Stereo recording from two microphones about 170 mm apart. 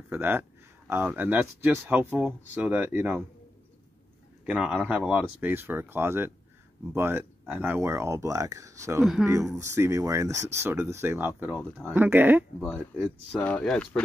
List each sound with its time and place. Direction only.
0.1 s speech: 10° right (ahead or behind)
4.5 s speech: 5° right (ahead or behind)
9.0 s speech: centre (ahead or behind)
9.6 s speech: 15° right (ahead or behind)
12.5 s speech: centre (ahead or behind)